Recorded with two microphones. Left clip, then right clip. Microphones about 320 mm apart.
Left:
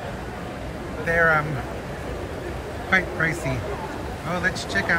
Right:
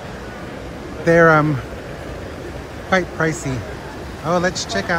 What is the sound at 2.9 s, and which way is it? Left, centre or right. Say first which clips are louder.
Speech: right 3 dB; centre.